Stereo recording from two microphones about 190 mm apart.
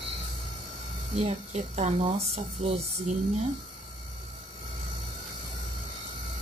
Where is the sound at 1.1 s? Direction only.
35° right (ahead or behind).